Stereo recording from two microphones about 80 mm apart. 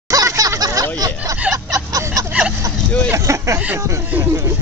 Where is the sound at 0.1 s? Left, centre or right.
Right.